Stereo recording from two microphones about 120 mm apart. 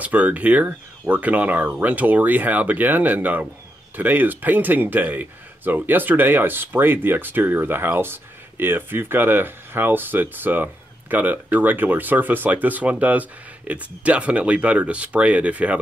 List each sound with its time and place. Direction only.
0.0 s speech: 10° right (ahead or behind)